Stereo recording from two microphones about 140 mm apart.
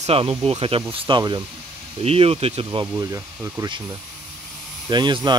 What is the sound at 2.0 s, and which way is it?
Speech, 45° right (ahead or behind).